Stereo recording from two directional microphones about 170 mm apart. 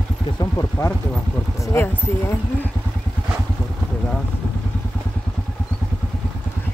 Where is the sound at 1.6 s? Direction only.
15° left (ahead or behind).